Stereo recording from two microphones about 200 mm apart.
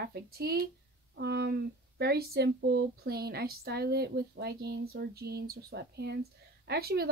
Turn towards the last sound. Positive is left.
turn(degrees=-50)  # may be behind; listen again after turning